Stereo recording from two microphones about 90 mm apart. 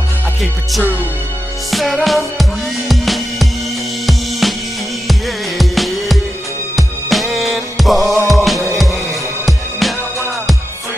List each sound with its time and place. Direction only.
0.4 s music: centre (ahead or behind)
5.6 s music: centre (ahead or behind)